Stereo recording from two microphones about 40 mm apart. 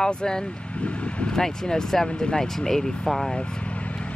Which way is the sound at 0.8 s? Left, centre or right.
Left.